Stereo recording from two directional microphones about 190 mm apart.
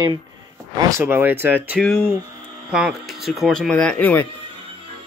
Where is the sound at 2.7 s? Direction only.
Centre (ahead or behind).